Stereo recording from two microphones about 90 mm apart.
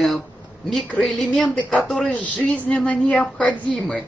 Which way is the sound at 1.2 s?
10° left (ahead or behind).